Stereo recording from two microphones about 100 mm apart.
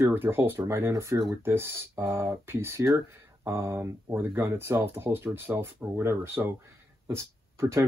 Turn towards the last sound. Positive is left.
turn(degrees=-30)  # may be behind; listen again after turning